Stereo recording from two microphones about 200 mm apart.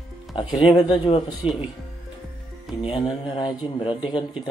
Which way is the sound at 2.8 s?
25° left (ahead or behind).